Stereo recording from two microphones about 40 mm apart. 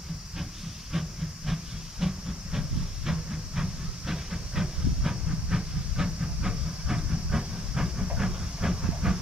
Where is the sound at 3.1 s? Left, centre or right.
Centre.